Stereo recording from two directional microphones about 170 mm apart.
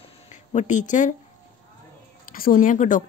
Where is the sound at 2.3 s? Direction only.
55° left (ahead or behind).